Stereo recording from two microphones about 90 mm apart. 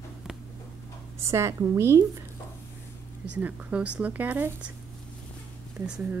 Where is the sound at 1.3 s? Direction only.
30° right (ahead or behind).